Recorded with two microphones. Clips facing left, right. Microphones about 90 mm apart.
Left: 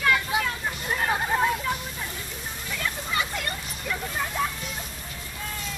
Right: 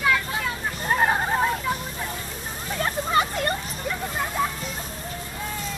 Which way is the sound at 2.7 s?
40° right (ahead or behind).